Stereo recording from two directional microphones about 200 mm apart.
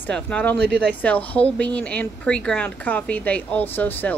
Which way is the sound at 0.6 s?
55° right (ahead or behind).